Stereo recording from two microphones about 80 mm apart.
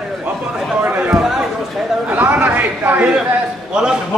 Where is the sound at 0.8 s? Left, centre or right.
Centre.